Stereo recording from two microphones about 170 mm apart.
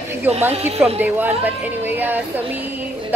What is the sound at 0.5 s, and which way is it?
Speech, 35° right (ahead or behind).